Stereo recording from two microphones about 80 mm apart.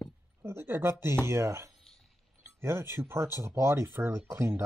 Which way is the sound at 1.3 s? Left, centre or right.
Right.